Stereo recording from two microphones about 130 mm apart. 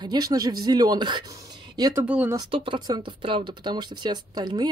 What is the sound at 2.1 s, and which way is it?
Speech, 10° right (ahead or behind).